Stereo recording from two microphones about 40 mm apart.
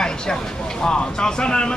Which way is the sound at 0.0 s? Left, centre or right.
Centre.